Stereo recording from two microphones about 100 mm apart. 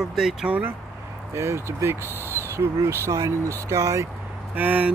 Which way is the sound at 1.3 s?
25° right (ahead or behind).